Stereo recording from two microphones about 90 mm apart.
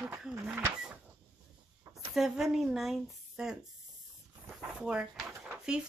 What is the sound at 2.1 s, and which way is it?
Speech, 5° right (ahead or behind).